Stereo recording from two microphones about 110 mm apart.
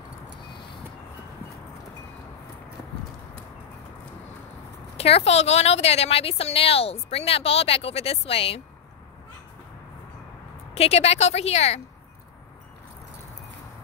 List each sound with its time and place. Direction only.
4.9 s speech: 65° left (ahead or behind)
10.7 s a woman's voice: 70° left (ahead or behind)